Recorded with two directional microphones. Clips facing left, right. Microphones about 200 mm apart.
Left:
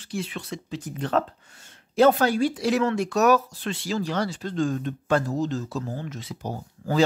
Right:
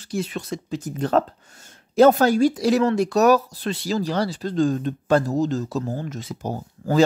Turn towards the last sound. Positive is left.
turn(degrees=-45)  # may be behind; listen again after turning